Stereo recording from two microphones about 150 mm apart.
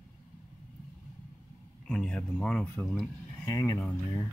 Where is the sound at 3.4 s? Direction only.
25° left (ahead or behind).